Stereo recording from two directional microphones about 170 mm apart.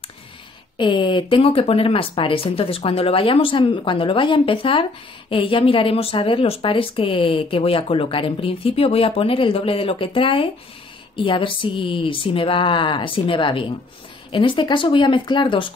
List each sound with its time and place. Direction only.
0.7 s a woman's voice: 30° left (ahead or behind)